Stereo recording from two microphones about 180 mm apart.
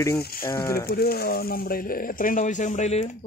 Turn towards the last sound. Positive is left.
turn(degrees=40)  # may be behind; listen again after turning